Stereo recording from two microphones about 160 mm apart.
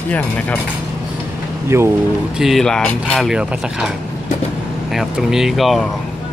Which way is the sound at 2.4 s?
Centre (ahead or behind).